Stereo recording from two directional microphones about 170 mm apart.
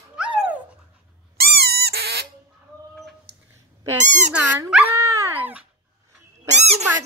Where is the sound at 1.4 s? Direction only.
70° right (ahead or behind).